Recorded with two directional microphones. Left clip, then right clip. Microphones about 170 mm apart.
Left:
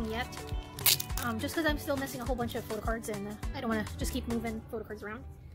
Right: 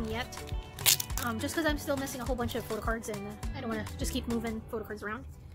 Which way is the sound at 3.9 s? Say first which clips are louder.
Right 1 dB; centre (ahead or behind).